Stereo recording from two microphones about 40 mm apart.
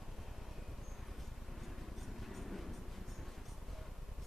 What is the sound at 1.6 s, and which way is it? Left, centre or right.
Train, centre.